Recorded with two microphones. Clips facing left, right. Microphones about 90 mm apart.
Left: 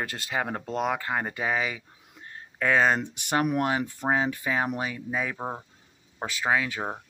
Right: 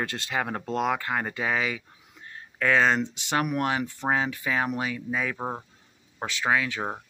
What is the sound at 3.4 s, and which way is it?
Speech, 25° left (ahead or behind).